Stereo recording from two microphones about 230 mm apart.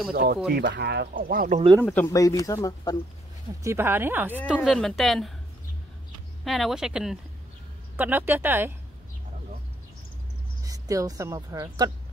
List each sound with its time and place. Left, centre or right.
0.1 s speech: right
1.9 s speech: centre
3.6 s speech: centre
4.6 s speech: centre
6.4 s speech: centre
10.6 s a woman's voice: centre